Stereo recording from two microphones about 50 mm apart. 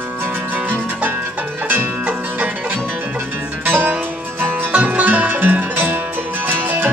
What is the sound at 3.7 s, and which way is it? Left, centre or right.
Music, right.